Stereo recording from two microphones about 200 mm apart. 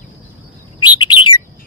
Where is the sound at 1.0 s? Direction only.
25° left (ahead or behind).